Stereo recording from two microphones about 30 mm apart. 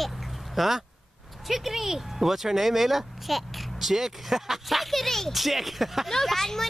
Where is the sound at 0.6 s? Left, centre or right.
Centre.